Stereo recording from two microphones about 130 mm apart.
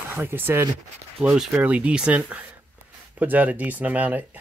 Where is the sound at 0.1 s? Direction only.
15° right (ahead or behind).